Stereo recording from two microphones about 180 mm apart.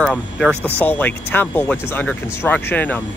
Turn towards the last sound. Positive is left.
turn(degrees=10)  # may be behind; listen again after turning